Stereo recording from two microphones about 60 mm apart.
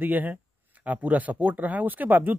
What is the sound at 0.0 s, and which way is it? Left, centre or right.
Speech, right.